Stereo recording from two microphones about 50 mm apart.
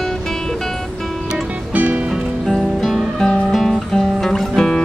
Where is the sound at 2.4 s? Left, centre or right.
Centre.